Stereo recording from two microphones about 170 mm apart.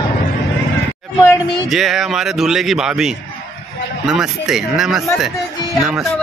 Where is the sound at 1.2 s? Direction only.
20° left (ahead or behind).